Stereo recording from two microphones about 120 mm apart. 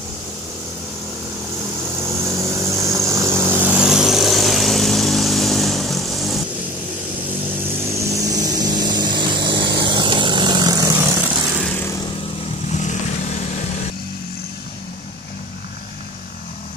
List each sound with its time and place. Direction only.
2.0 s vehicle: 20° right (ahead or behind)
3.7 s vehicle: 5° right (ahead or behind)
7.9 s vehicle: 25° right (ahead or behind)
12.7 s vehicle: 85° left